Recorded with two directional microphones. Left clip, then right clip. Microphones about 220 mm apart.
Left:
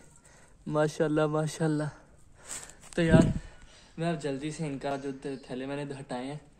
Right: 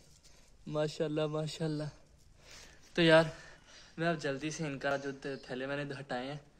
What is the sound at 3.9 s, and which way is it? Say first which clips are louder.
A man's voice: left 1 dB; centre (ahead or behind).